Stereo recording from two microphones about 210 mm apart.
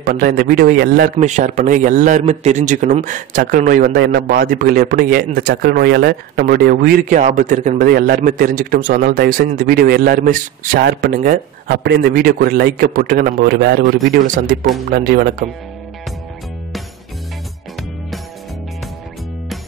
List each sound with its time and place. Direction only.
0.0 s a man's voice: 40° right (ahead or behind)
1.1 s a man's voice: 35° right (ahead or behind)
14.9 s a man's voice: 45° right (ahead or behind)